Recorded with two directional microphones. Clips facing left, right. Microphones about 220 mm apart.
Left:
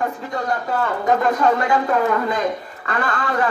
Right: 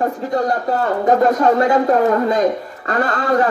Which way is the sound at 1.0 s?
40° right (ahead or behind).